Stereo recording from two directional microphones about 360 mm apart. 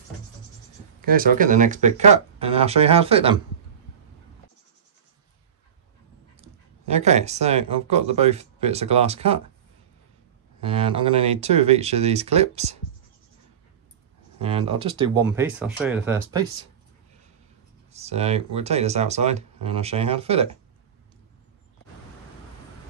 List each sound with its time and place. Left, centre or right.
1.0 s speech: right
6.4 s speech: centre
10.6 s speech: centre
14.4 s speech: centre
17.9 s speech: centre